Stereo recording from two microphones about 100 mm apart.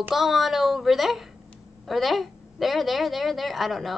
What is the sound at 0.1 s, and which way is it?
A woman's voice, centre (ahead or behind).